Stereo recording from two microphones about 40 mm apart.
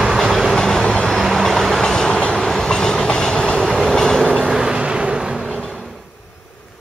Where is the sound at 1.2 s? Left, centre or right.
Centre.